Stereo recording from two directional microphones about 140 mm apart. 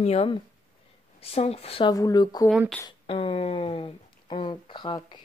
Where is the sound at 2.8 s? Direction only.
40° left (ahead or behind).